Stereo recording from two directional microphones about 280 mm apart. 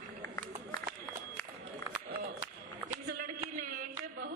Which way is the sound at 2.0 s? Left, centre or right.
Right.